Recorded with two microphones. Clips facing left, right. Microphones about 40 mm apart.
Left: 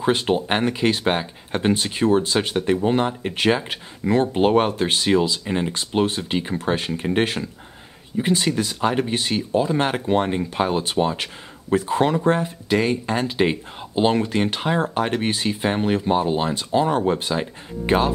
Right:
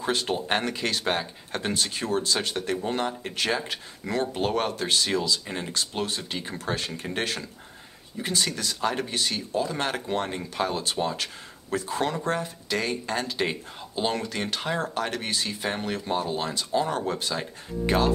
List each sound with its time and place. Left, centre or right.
0.0 s speech: left